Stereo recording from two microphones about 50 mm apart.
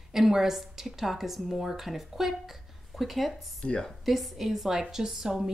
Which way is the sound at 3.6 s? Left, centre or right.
Centre.